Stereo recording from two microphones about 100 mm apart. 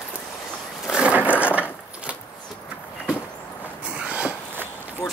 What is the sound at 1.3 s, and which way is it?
Wood, 20° left (ahead or behind).